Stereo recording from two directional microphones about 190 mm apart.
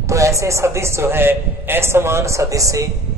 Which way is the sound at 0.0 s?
15° right (ahead or behind).